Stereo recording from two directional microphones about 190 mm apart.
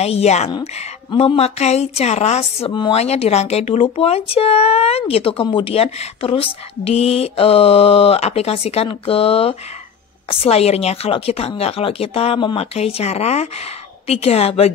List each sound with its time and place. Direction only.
0.0 s speech: 35° left (ahead or behind)